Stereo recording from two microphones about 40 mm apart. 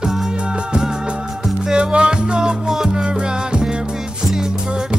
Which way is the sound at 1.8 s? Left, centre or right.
Right.